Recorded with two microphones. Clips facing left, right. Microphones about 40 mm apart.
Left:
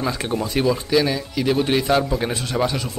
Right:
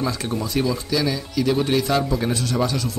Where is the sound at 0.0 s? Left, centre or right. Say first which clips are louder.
Left 1 dB; left.